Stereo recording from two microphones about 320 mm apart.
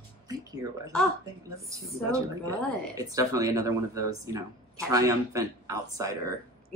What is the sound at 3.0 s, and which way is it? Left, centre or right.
Speech, centre.